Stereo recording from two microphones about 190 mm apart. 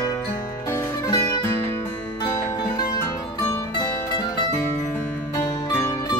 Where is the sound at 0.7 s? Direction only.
15° left (ahead or behind).